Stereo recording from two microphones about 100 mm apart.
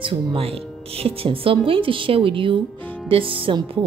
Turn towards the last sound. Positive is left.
turn(degrees=-55)  # may be behind; listen again after turning